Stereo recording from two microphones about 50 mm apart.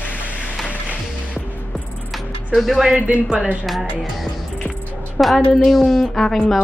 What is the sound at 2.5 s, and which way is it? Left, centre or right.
Speech, centre.